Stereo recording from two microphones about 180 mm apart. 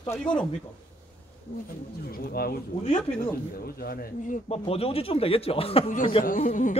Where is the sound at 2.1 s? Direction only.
55° left (ahead or behind).